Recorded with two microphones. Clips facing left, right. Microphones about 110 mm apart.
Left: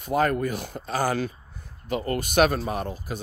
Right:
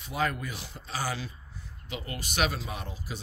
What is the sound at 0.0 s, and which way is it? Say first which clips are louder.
Speech: left 8 dB; 45° left (ahead or behind).